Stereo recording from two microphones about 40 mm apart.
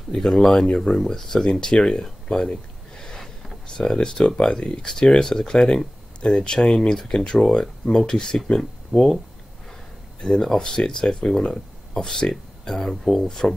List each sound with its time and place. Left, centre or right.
0.1 s speech: centre
3.0 s boat: centre
3.6 s speech: centre
10.3 s speech: centre